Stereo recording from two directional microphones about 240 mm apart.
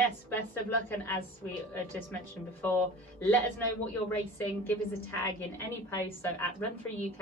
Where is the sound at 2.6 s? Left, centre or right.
Centre.